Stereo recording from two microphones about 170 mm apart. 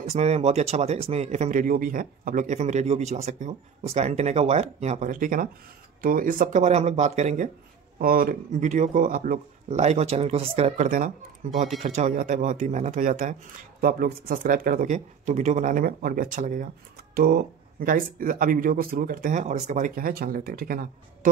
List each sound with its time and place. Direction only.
0.1 s a man's voice: 40° right (ahead or behind)
8.0 s speech: 60° right (ahead or behind); by 10.9 s 35° right (ahead or behind)
11.4 s speech: 50° right (ahead or behind)
17.1 s speech: 65° right (ahead or behind)